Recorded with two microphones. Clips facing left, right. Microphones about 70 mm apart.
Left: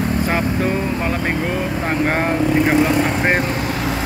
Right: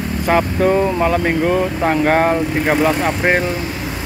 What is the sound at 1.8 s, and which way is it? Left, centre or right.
Speech, right.